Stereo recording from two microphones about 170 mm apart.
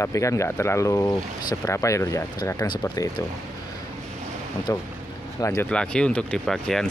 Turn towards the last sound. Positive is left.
turn(degrees=5)  # may be behind; listen again after turning